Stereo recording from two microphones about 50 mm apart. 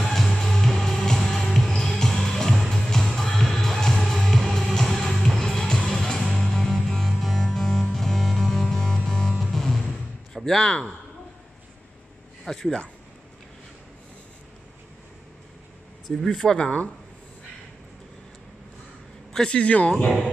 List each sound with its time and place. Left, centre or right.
0.0 s music: centre
10.3 s a man's voice: centre
12.4 s speech: centre
16.3 s speech: centre
16.5 s speech: centre
19.3 s speech: centre